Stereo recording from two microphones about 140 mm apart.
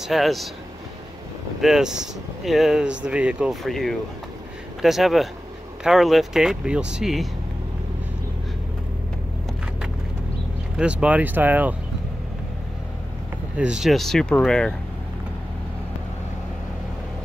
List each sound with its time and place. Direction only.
0.0 s speech: centre (ahead or behind)
1.6 s speech: 5° right (ahead or behind)
10.8 s speech: 10° right (ahead or behind)
13.6 s speech: 5° right (ahead or behind)